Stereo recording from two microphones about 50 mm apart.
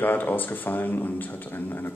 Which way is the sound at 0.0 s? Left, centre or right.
Left.